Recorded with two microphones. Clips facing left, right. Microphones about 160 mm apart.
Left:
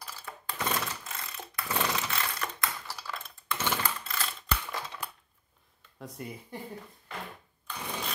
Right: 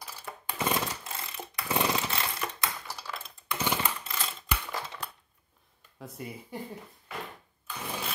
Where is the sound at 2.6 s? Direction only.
20° right (ahead or behind).